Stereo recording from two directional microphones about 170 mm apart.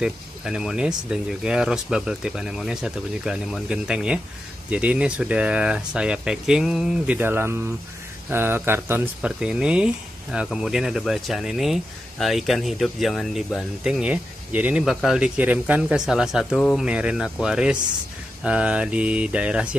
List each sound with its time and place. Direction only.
0.0 s speech: 5° right (ahead or behind)
18.4 s mantra: 5° right (ahead or behind)